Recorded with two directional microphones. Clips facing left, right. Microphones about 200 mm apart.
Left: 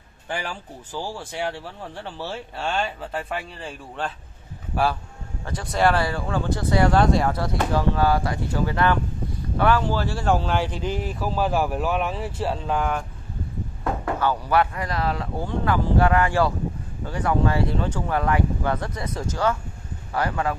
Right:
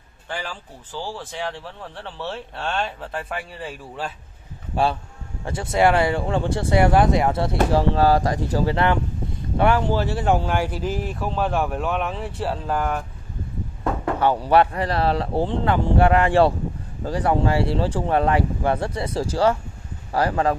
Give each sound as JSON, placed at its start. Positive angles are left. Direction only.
{"t": 0.9, "sound": "speech", "side_deg": 15}
{"t": 5.4, "sound": "speech", "side_deg": -25}
{"t": 8.7, "sound": "speech", "side_deg": -25}
{"t": 14.2, "sound": "speech", "side_deg": -30}